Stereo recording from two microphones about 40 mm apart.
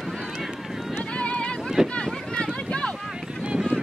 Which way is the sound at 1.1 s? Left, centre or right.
Left.